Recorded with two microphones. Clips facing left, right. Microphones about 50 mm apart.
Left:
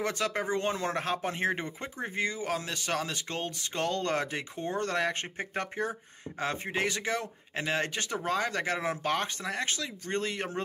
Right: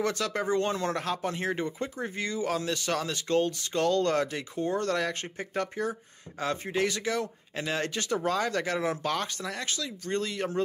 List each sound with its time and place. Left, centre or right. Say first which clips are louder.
0.0 s speech: right 2 dB; centre
0.9 s speech: even; left